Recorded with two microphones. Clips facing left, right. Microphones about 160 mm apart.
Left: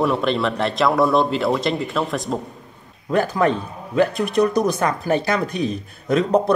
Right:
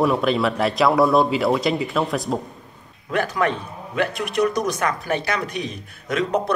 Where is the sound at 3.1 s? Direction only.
35° left (ahead or behind).